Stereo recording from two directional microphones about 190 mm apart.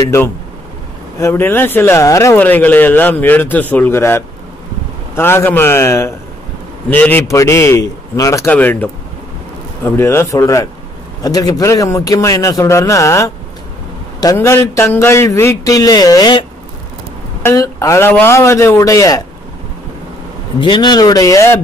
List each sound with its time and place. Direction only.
1.2 s speech: 10° left (ahead or behind)
20.6 s speech: 20° left (ahead or behind)